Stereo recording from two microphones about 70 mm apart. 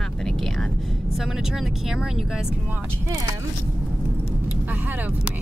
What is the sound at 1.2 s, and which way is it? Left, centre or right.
Speech, centre.